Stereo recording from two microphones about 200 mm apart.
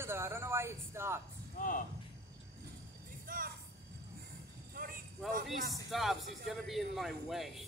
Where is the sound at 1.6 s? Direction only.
45° left (ahead or behind).